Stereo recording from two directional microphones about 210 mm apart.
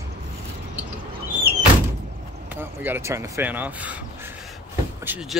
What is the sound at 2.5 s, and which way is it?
Speech, 10° right (ahead or behind).